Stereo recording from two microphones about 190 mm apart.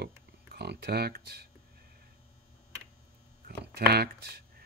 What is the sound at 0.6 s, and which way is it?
Speech, 60° right (ahead or behind).